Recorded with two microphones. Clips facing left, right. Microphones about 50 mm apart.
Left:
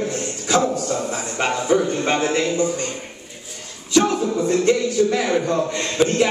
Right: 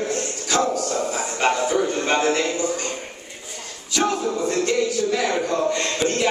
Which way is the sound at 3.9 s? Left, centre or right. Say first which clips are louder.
Left 4 dB; centre.